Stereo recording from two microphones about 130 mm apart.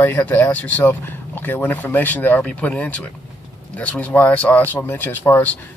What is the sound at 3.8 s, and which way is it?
A man's voice, 10° left (ahead or behind).